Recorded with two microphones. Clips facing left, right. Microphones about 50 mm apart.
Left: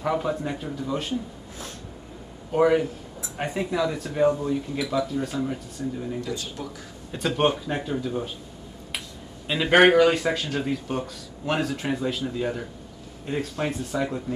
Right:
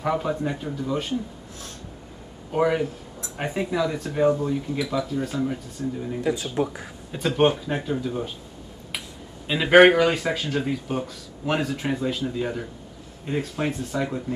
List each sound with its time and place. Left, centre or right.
0.0 s speech: centre
2.5 s speech: centre
6.5 s speech: right
7.1 s speech: centre
9.5 s speech: centre